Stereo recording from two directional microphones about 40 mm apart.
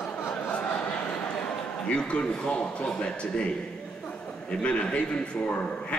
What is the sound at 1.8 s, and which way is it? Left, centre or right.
A man's voice, left.